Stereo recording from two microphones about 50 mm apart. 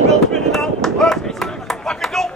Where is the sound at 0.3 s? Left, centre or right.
Centre.